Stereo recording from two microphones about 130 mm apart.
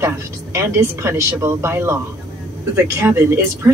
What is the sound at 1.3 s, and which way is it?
Speech, 20° right (ahead or behind).